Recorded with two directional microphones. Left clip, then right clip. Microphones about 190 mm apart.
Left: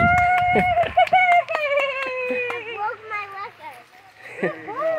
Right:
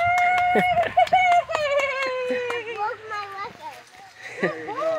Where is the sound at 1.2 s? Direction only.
10° right (ahead or behind).